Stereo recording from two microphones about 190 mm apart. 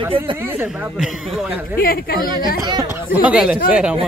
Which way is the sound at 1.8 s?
50° left (ahead or behind).